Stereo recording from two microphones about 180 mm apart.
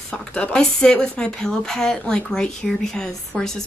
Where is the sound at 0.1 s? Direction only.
5° left (ahead or behind).